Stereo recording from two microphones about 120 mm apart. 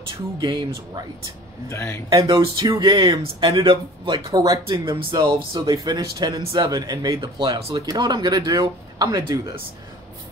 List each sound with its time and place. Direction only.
0.4 s speech: 35° right (ahead or behind)
1.7 s a man's voice: 25° left (ahead or behind)
2.2 s speech: 40° right (ahead or behind)
4.8 s speech: 40° right (ahead or behind)
6.4 s speech: 45° right (ahead or behind)
6.7 s speech: 35° right (ahead or behind)